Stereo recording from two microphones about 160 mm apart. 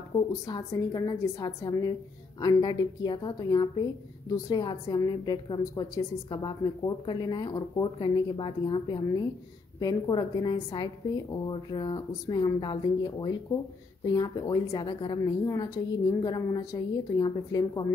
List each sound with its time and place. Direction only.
0.5 s speech: 25° left (ahead or behind)